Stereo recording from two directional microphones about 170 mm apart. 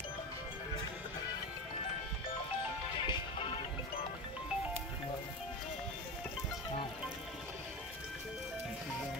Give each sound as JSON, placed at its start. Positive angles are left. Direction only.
{"t": 3.1, "sound": "music", "side_deg": 30}